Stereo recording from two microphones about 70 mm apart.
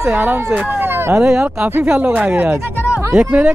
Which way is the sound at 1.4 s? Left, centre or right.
Centre.